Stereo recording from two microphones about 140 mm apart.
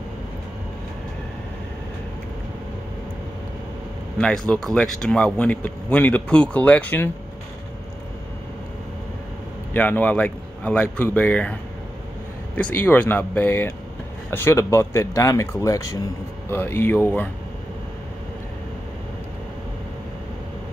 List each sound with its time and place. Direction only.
4.2 s speech: 5° left (ahead or behind)
9.8 s speech: 10° left (ahead or behind)
12.5 s speech: 10° left (ahead or behind)